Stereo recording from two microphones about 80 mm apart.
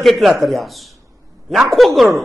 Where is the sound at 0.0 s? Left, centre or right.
Centre.